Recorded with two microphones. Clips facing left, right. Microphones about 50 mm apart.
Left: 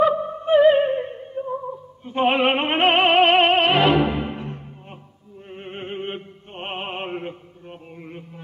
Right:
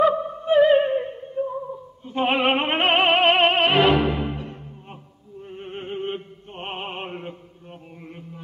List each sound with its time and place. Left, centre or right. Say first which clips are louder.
0.0 s opera: left 1 dB; centre
2.2 s music: left 2 dB; centre
5.6 s opera: even; left
6.0 s mantra: right 1 dB; centre